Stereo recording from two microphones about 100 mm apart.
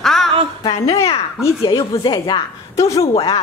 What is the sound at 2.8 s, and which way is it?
Speech, 35° left (ahead or behind).